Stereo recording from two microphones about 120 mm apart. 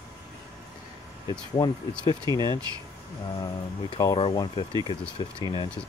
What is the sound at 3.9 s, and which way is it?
Speech, 35° left (ahead or behind).